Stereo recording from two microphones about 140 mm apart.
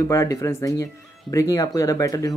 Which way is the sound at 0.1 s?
20° left (ahead or behind).